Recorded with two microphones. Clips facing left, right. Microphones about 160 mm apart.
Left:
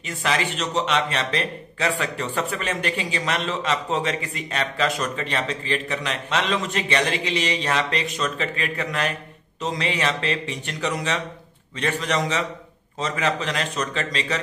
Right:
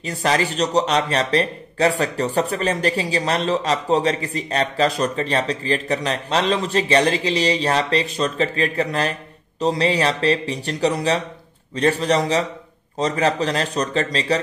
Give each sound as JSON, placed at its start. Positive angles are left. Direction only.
{"t": 0.2, "sound": "a man's voice", "side_deg": -40}